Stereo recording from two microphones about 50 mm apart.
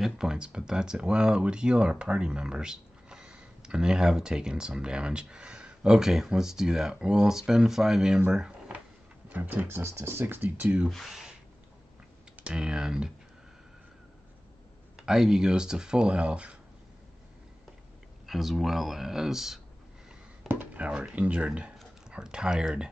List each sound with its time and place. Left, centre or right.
0.0 s speech: centre
5.8 s speech: centre
8.3 s a sound: centre
9.3 s speech: right
9.7 s speech: right
10.1 s speech: right
10.4 s speech: right
10.9 s speech: centre
12.4 s speech: centre
15.0 s speech: centre
18.2 s speech: centre
20.4 s a sound: right
20.8 s speech: centre